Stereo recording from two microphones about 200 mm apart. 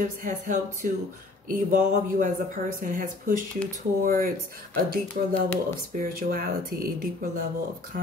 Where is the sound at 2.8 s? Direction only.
40° right (ahead or behind).